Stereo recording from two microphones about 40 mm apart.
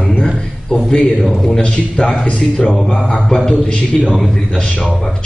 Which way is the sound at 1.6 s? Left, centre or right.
Left.